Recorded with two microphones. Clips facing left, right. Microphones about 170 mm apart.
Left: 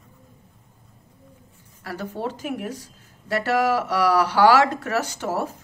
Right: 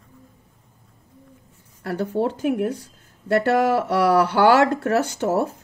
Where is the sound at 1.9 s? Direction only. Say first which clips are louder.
Right 7 dB; 60° right (ahead or behind).